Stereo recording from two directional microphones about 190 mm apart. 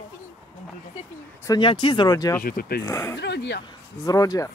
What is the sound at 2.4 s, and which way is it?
Speech, 50° left (ahead or behind).